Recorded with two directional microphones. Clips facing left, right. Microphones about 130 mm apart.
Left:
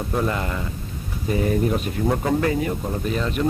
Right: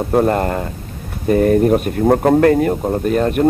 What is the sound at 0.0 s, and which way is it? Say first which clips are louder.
Speech: right 9 dB; 50° right (ahead or behind).